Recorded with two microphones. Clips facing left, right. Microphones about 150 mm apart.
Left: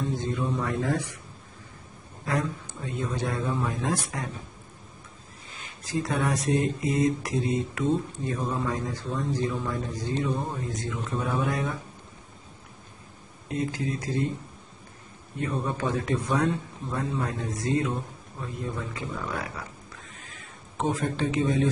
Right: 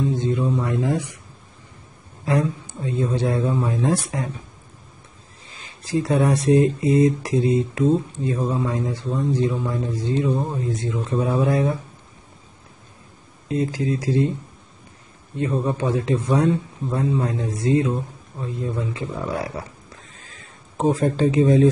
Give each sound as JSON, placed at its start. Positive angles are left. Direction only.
{"t": 0.1, "sound": "speech", "side_deg": -25}
{"t": 2.2, "sound": "speech", "side_deg": -30}
{"t": 5.5, "sound": "speech", "side_deg": -30}
{"t": 13.5, "sound": "speech", "side_deg": -35}
{"t": 15.3, "sound": "speech", "side_deg": -30}
{"t": 20.2, "sound": "a sound", "side_deg": -35}